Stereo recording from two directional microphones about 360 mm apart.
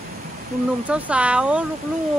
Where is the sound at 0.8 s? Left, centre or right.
Centre.